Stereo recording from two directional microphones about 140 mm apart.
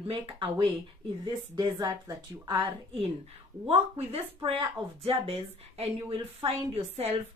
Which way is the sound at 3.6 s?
45° right (ahead or behind).